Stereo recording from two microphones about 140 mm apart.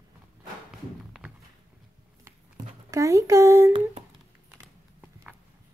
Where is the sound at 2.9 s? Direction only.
20° right (ahead or behind).